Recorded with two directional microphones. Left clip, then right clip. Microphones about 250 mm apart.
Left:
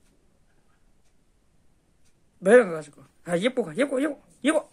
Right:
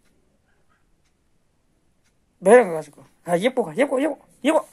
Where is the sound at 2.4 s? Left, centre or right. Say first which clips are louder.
Right 4 dB; centre.